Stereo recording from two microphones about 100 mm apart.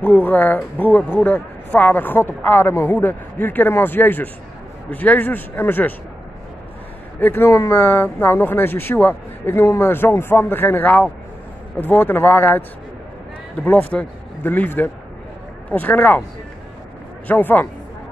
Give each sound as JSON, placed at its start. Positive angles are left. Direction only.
{"t": 0.0, "sound": "speech", "side_deg": 20}
{"t": 7.2, "sound": "speech", "side_deg": 20}
{"t": 17.3, "sound": "speech", "side_deg": 20}